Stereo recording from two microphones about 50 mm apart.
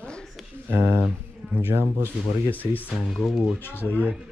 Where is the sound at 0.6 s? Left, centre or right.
Right.